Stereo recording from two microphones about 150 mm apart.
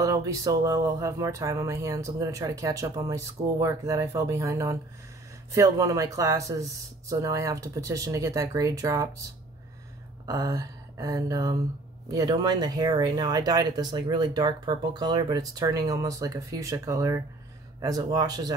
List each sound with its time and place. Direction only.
0.0 s speech: 20° right (ahead or behind)
10.2 s speech: 25° right (ahead or behind)